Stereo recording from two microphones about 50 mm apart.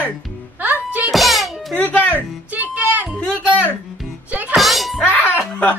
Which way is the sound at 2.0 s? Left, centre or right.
Left.